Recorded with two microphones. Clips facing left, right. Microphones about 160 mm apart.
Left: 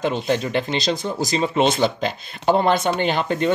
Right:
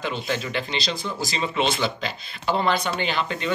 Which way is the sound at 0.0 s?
45° left (ahead or behind).